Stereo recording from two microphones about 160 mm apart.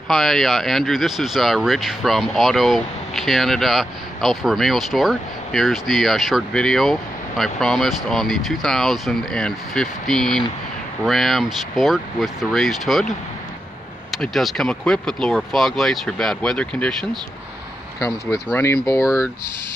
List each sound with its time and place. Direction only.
0.1 s speech: centre (ahead or behind)
14.1 s speech: centre (ahead or behind)
17.9 s speech: 20° left (ahead or behind)